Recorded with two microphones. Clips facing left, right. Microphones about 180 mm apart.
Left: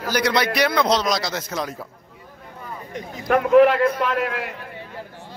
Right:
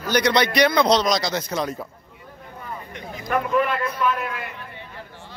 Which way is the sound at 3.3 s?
70° left (ahead or behind).